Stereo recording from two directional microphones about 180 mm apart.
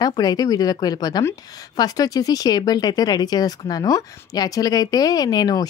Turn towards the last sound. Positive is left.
turn(degrees=20)  # may be behind; listen again after turning